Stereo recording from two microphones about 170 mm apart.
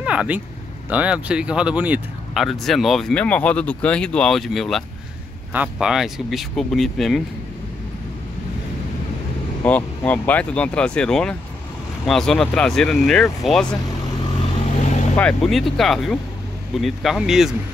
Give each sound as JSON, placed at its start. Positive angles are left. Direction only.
{"t": 0.0, "sound": "vehicle", "side_deg": -5}
{"t": 0.8, "sound": "speech", "side_deg": -5}
{"t": 9.6, "sound": "speech", "side_deg": 10}
{"t": 15.1, "sound": "speech", "side_deg": 5}